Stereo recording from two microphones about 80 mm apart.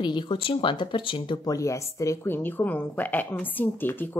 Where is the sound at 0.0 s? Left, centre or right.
Left.